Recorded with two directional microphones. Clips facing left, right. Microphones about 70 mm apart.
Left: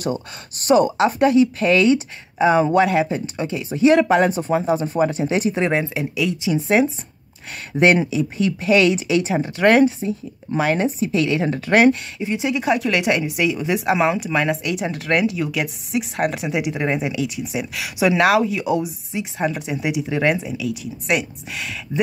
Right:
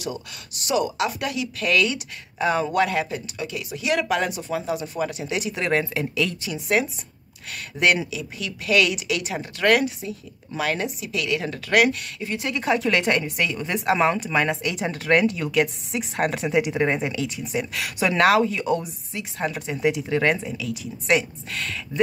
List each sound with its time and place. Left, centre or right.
0.0 s speech: left
5.7 s speech: centre; by 12.0 s left
12.2 s speech: centre
12.6 s speech: centre
19.1 s speech: centre
19.5 s speech: centre